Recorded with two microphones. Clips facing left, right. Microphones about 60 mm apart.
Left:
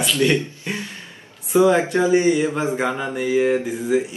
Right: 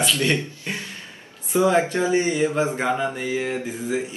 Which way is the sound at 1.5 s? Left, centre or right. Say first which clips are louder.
Left 3 dB; centre.